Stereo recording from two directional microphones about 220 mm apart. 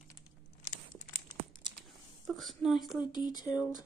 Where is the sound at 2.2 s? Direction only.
Centre (ahead or behind).